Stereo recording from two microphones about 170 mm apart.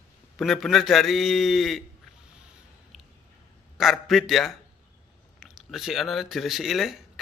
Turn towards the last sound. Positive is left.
turn(degrees=0)  # may be behind; listen again after turning